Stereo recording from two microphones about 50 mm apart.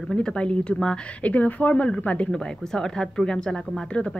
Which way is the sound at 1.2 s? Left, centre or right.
Left.